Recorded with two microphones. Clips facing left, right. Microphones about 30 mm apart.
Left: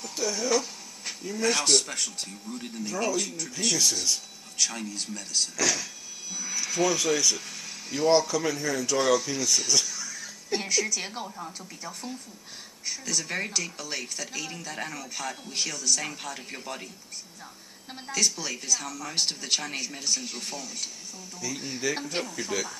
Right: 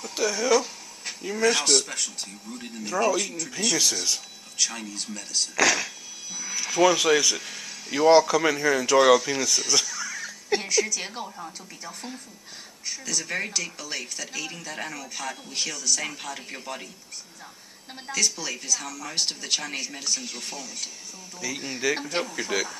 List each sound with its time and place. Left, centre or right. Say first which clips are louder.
0.0 s speech: right 4 dB; right
0.5 s music: right 4 dB; centre
1.4 s speech: right 2 dB; centre
2.8 s speech: right 5 dB; centre
5.6 s speech: right 8 dB; right
6.3 s speech: right 3 dB; centre
8.1 s speech: right 5 dB; right
9.1 s speech: right 5 dB; right
9.5 s speech: left 1 dB; centre
10.0 s music: right 6 dB; right
11.0 s speech: right 1 dB; centre
18.1 s speech: right 1 dB; centre
21.4 s speech: right 3 dB; centre